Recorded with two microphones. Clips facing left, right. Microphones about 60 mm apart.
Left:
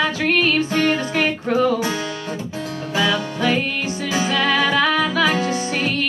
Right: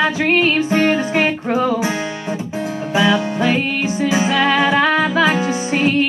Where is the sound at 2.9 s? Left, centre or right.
Right.